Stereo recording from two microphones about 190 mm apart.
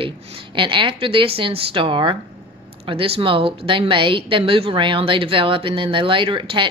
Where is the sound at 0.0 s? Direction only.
25° right (ahead or behind).